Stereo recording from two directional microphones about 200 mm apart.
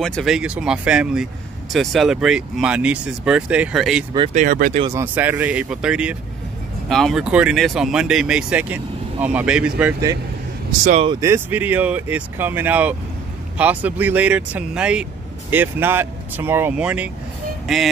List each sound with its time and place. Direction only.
0.0 s speech: centre (ahead or behind)
4.3 s speech: 40° right (ahead or behind)
4.9 s speech: 10° right (ahead or behind)
10.9 s speech: 30° right (ahead or behind)
11.1 s speech: 10° right (ahead or behind)